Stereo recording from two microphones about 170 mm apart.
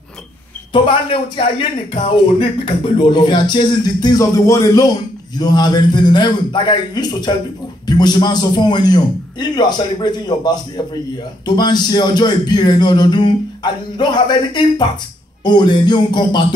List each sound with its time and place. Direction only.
0.7 s a man's voice: 30° left (ahead or behind)